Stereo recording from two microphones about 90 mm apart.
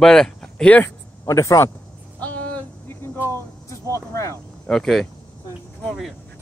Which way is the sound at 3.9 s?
35° left (ahead or behind).